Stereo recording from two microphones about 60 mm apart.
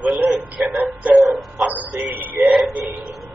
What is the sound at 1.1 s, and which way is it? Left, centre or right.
Speech, centre.